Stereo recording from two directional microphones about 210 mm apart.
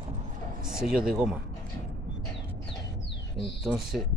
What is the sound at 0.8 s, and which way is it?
Speech, 5° right (ahead or behind).